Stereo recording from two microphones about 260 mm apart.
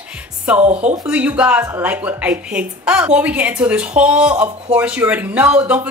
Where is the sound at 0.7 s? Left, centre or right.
Right.